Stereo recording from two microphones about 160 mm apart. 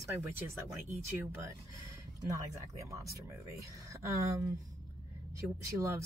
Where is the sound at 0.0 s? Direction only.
15° right (ahead or behind).